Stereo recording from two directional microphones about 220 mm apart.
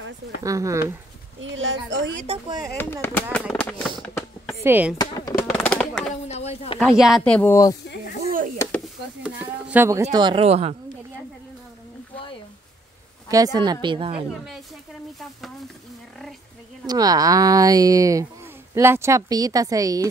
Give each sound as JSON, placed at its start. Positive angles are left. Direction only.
{"t": 0.4, "sound": "speech", "side_deg": -15}
{"t": 1.4, "sound": "speech", "side_deg": -60}
{"t": 2.2, "sound": "a woman's voice", "side_deg": -25}
{"t": 2.8, "sound": "speech", "side_deg": 10}
{"t": 4.6, "sound": "speech", "side_deg": -10}
{"t": 4.9, "sound": "chop", "side_deg": 15}
{"t": 5.5, "sound": "bird", "side_deg": 5}
{"t": 6.2, "sound": "a sound", "side_deg": 30}
{"t": 6.8, "sound": "speech", "side_deg": 0}
{"t": 8.7, "sound": "a sound", "side_deg": 0}
{"t": 10.1, "sound": "a woman's voice", "side_deg": -20}
{"t": 13.3, "sound": "a woman's voice", "side_deg": -15}
{"t": 16.8, "sound": "speech", "side_deg": -15}